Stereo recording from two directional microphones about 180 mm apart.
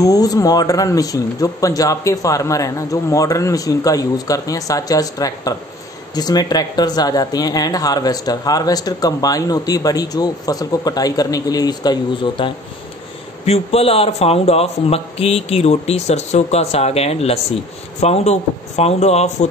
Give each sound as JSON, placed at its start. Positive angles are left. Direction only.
{"t": 0.0, "sound": "speech", "side_deg": 20}